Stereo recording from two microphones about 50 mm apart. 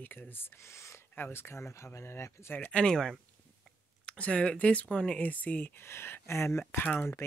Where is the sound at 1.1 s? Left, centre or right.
Left.